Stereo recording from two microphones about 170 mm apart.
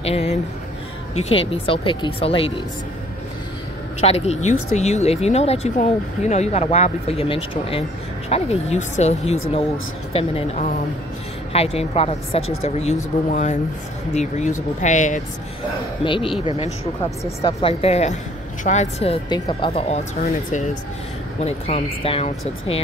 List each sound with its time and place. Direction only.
0.0 s a sound: 40° left (ahead or behind)
1.1 s speech: 35° left (ahead or behind)
4.0 s speech: 40° left (ahead or behind)
16.0 s speech: 30° left (ahead or behind)
17.6 s speech: 35° left (ahead or behind)
19.2 s speech: 25° left (ahead or behind)
20.2 s speech: 45° left (ahead or behind)